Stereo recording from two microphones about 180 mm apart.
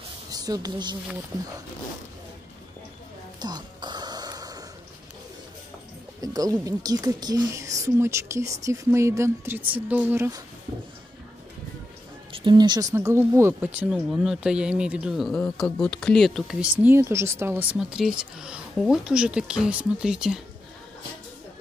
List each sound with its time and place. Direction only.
0.3 s a woman's voice: 20° right (ahead or behind)
3.3 s music: 25° right (ahead or behind)
6.2 s a woman's voice: 20° right (ahead or behind)
12.3 s speech: 25° right (ahead or behind); by 16.7 s centre (ahead or behind)
16.8 s speech: 15° right (ahead or behind)